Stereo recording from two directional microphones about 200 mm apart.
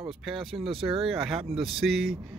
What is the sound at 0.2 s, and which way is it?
Speech, centre (ahead or behind).